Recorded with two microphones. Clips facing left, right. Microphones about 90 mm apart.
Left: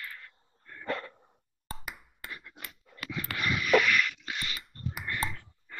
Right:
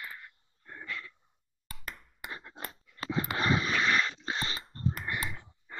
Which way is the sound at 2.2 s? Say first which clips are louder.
Right 4 dB; 30° right (ahead or behind).